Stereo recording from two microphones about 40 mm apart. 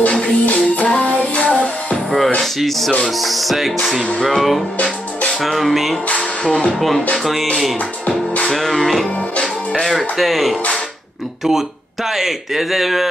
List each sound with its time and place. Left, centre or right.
0.0 s music: left
2.0 s music: centre
3.1 s speech: centre
6.0 s music: left
6.7 s speech: centre
9.1 s music: left
9.8 s speech: centre